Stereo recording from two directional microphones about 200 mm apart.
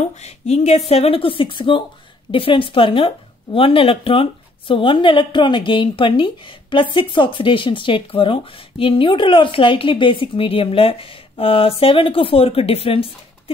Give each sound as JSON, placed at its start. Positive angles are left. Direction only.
{"t": 0.2, "sound": "speech", "side_deg": 35}